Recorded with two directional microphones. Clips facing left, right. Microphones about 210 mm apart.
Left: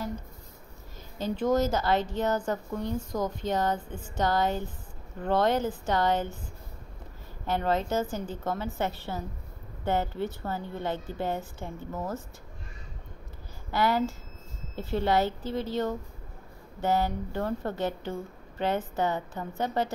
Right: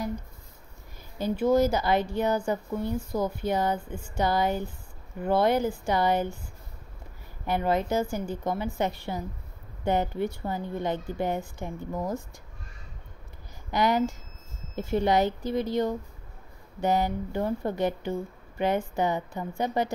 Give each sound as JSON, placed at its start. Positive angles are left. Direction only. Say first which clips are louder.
{"t": 1.1, "sound": "speech", "louder": "right 3 dB", "side_deg": -10}
{"t": 7.4, "sound": "speech", "louder": "right 2 dB", "side_deg": -10}
{"t": 13.7, "sound": "speech", "louder": "right 2 dB", "side_deg": -15}